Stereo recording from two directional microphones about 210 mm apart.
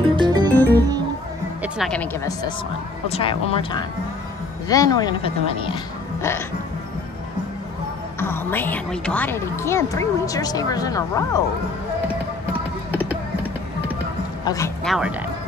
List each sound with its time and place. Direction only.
0.0 s music: 20° right (ahead or behind)
1.6 s music: centre (ahead or behind)
3.1 s speech: 25° left (ahead or behind)
8.2 s a woman's voice: 10° left (ahead or behind)
12.9 s music: 10° right (ahead or behind)
14.4 s speech: 15° left (ahead or behind)
14.9 s speech: 5° right (ahead or behind)